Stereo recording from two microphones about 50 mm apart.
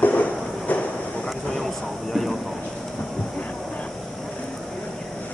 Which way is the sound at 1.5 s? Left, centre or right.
Centre.